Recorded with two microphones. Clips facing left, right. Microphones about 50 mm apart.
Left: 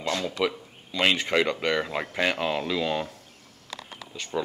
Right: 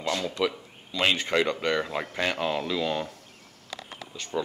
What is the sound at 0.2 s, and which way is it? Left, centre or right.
Speech, centre.